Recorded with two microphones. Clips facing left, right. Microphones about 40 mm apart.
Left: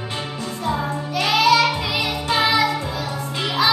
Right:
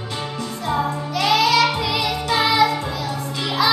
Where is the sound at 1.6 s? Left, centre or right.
Left.